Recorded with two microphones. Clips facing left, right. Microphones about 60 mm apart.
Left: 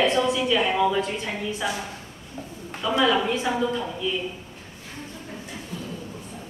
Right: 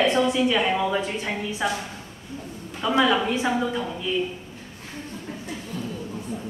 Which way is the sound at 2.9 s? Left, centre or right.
Centre.